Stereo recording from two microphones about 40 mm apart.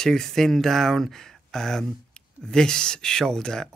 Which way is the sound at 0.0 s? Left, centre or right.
Centre.